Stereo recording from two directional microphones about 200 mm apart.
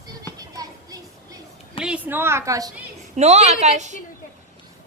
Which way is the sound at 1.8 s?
5° right (ahead or behind).